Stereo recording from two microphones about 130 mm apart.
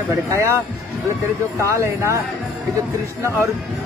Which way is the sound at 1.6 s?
20° right (ahead or behind).